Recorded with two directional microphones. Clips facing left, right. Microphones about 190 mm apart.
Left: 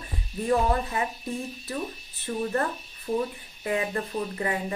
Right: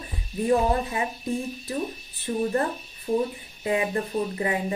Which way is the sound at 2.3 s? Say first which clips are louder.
Right 3 dB; 25° right (ahead or behind).